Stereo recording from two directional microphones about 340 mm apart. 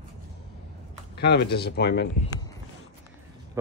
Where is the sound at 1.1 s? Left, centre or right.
Left.